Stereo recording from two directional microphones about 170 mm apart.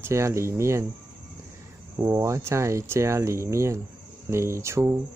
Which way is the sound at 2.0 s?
15° right (ahead or behind).